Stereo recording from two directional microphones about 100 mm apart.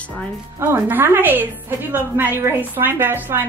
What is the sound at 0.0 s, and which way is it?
Speech, 15° left (ahead or behind).